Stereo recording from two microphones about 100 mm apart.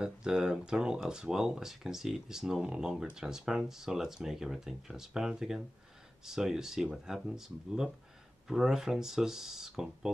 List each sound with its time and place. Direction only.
0.0 s speech: 5° right (ahead or behind)